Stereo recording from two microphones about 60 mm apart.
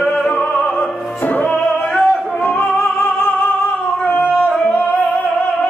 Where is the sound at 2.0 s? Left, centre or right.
Centre.